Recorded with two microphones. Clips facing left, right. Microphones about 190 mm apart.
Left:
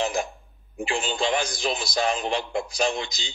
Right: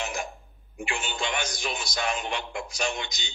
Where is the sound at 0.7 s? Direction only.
30° left (ahead or behind).